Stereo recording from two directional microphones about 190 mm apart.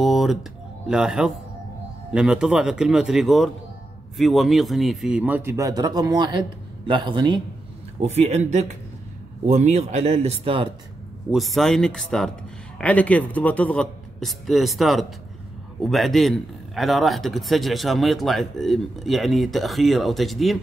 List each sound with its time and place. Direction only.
0.0 s a man's voice: centre (ahead or behind); by 7.4 s 25° right (ahead or behind)
8.0 s speech: 35° right (ahead or behind)
11.3 s a man's voice: centre (ahead or behind)